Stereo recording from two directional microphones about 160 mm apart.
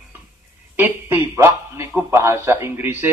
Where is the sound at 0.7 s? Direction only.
15° right (ahead or behind).